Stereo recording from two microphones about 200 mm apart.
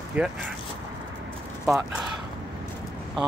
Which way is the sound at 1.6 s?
Centre (ahead or behind).